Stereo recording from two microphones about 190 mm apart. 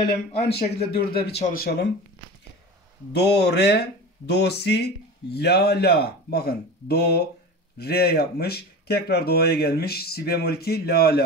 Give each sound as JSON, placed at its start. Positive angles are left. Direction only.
{"t": 0.3, "sound": "speech", "side_deg": 30}
{"t": 0.9, "sound": "speech", "side_deg": 55}
{"t": 3.1, "sound": "speech", "side_deg": 60}